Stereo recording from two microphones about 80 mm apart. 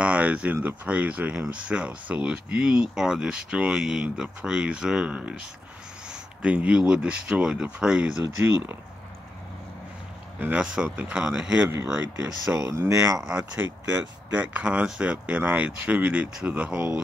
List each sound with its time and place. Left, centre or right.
0.0 s speech: centre
10.4 s speech: centre
12.3 s speech: right
13.2 s speech: centre
13.5 s speech: right